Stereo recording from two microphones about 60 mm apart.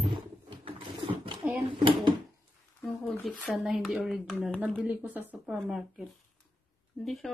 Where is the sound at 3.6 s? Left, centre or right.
Centre.